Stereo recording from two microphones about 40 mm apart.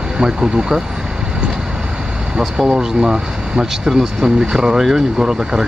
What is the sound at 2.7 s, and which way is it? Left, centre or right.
Speech, centre.